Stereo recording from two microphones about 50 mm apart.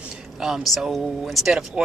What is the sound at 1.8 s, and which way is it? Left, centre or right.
Speech, centre.